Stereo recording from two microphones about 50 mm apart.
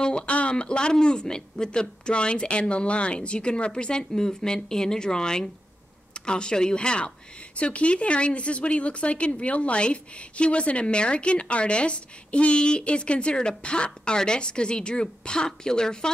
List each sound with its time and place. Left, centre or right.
0.0 s a woman's voice: left